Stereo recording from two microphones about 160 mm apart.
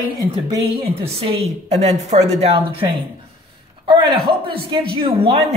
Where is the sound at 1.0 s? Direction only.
40° right (ahead or behind).